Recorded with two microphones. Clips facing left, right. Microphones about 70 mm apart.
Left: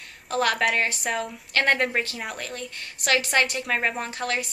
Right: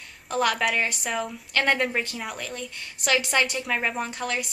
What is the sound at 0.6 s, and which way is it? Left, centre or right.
A woman's voice, centre.